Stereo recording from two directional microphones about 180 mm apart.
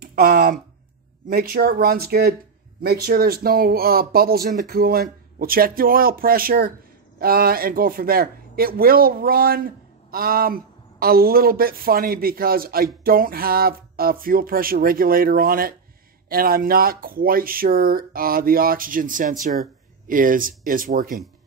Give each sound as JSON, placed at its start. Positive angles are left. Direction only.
{"t": 0.0, "sound": "speech", "side_deg": -55}